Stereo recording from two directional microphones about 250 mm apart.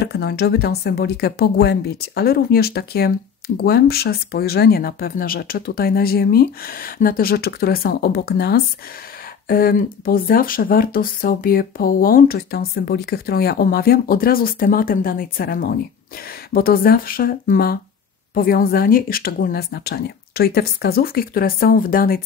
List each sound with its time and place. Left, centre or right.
0.0 s speech: left